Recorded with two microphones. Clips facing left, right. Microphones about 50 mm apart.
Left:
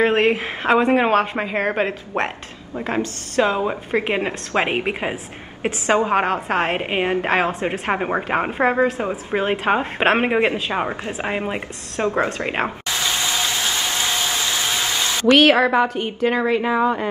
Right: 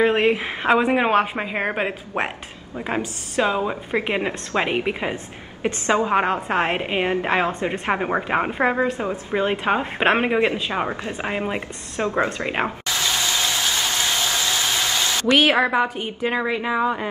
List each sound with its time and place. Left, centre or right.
0.0 s a woman's voice: centre
4.5 s a woman's voice: left
6.1 s a woman's voice: centre
6.8 s a woman's voice: centre
9.3 s a woman's voice: centre
12.0 s a woman's voice: left
15.3 s a woman's voice: centre